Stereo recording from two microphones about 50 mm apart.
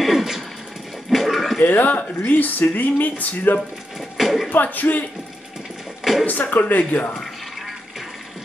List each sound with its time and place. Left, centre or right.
0.0 s a sound: centre
1.1 s dog: centre
1.6 s speech: left
4.2 s a sound: centre
4.5 s speech: left
6.2 s speech: left